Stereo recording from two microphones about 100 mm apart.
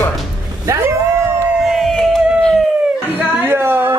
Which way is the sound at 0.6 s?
30° right (ahead or behind).